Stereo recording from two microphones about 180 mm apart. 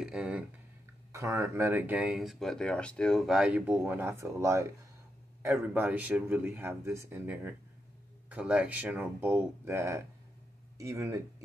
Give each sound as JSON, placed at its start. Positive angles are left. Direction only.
{"t": 0.0, "sound": "speech", "side_deg": -5}
{"t": 1.1, "sound": "speech", "side_deg": -15}